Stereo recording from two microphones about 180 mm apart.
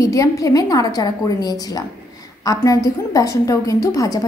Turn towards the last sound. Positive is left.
turn(degrees=20)  # may be behind; listen again after turning